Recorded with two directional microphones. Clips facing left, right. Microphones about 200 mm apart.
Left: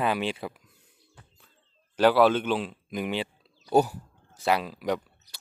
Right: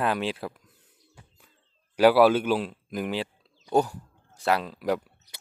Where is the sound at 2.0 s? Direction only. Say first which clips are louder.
Right 2 dB; 10° right (ahead or behind).